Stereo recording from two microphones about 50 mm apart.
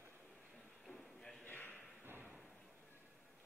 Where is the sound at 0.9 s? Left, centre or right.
Centre.